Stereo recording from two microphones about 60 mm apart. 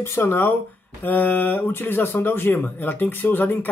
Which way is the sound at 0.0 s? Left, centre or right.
Left.